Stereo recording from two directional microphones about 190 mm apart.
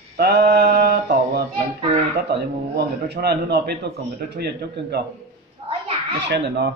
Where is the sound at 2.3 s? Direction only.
60° right (ahead or behind).